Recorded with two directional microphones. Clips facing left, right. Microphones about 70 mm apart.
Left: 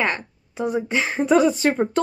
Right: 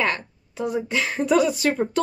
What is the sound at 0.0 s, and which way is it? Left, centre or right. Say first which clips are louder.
Speech: left 1 dB; left.